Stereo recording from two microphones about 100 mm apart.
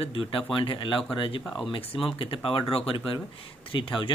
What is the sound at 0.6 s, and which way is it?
Speech, 55° left (ahead or behind).